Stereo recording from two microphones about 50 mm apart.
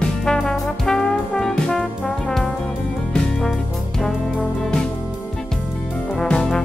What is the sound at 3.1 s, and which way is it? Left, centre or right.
Music, centre.